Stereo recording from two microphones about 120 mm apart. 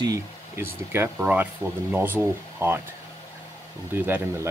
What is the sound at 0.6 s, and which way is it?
Speech, 20° right (ahead or behind).